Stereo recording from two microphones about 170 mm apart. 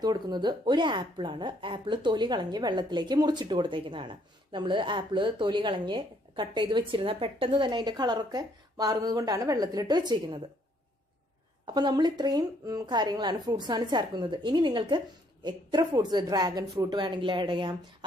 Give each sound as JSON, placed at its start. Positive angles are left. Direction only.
{"t": 0.0, "sound": "speech", "side_deg": -25}
{"t": 11.6, "sound": "speech", "side_deg": -25}